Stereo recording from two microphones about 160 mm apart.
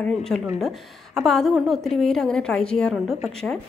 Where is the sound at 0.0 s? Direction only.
5° left (ahead or behind).